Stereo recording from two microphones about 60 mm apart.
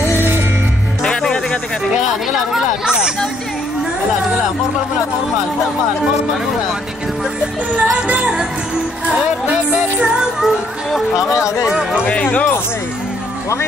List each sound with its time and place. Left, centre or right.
1.0 s music: centre
2.5 s a sound: centre
7.7 s music: right
9.5 s music: centre
10.4 s speech: centre
11.3 s speech: left
12.1 s speech: left